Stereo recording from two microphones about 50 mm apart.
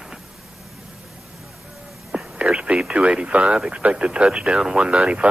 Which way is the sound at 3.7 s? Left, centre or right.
Right.